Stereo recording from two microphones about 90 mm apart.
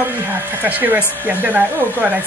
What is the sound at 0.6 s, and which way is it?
Speech, 20° right (ahead or behind).